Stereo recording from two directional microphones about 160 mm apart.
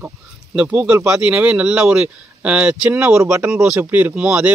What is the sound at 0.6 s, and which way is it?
Speech, 10° right (ahead or behind).